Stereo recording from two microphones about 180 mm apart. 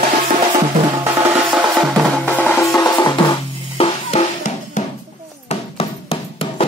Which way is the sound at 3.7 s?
35° left (ahead or behind).